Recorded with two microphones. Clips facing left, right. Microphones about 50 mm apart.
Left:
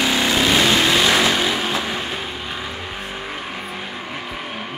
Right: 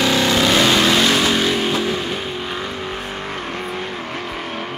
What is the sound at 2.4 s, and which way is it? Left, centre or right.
Vehicle, centre.